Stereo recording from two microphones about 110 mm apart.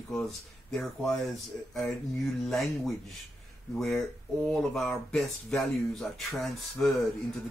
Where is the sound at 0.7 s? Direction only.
5° left (ahead or behind).